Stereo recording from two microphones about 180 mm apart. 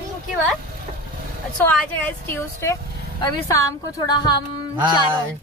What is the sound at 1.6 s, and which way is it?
A woman's voice, 10° left (ahead or behind).